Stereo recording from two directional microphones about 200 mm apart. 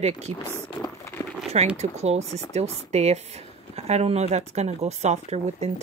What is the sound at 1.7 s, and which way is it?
Speech, 35° right (ahead or behind).